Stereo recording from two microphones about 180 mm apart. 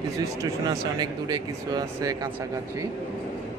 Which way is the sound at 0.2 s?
20° right (ahead or behind).